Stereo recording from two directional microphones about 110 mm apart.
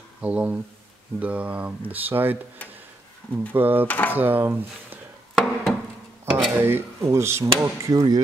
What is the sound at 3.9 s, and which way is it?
Speech, 15° left (ahead or behind).